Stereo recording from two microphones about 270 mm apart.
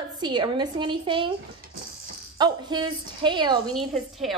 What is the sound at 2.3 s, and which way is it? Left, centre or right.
A woman's voice, centre.